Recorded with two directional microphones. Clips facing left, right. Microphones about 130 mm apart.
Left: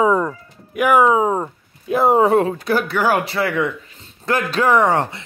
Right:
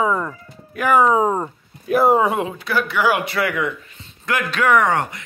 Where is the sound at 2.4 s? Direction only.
40° left (ahead or behind).